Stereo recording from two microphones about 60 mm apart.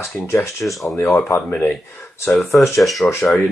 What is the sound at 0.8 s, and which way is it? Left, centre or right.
Speech, left.